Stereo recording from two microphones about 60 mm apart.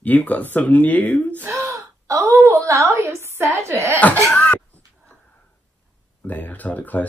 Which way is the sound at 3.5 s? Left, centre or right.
Right.